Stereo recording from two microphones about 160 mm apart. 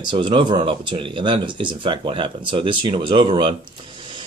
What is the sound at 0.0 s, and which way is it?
Speech, 30° right (ahead or behind).